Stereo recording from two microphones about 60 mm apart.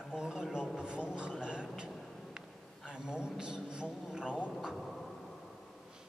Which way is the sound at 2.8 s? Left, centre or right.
Centre.